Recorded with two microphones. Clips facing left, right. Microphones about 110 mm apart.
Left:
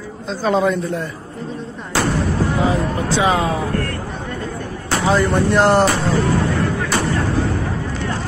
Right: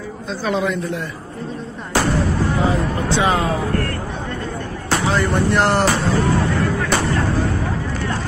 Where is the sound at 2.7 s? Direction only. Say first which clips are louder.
Left 1 dB; 20° left (ahead or behind).